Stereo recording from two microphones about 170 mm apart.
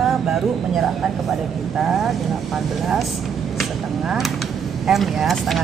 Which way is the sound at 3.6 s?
Centre (ahead or behind).